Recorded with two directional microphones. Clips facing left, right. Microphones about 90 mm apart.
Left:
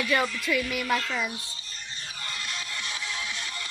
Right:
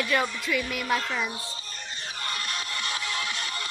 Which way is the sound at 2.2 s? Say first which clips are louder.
Right 3 dB; 55° right (ahead or behind).